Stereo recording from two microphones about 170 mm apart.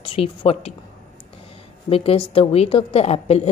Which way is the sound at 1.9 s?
35° left (ahead or behind).